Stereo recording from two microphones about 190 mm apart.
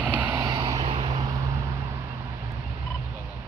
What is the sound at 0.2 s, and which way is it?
Vehicle, 25° right (ahead or behind).